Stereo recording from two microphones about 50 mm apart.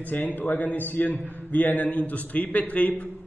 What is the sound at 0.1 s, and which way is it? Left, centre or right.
A man's voice, left.